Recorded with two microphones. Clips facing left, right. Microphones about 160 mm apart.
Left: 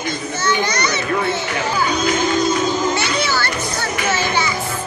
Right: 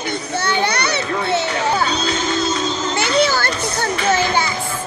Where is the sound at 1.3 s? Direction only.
65° right (ahead or behind).